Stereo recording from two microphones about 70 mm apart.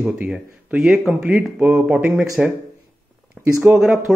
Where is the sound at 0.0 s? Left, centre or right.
Centre.